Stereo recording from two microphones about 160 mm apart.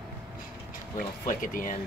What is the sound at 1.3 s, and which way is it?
Speech, 60° left (ahead or behind).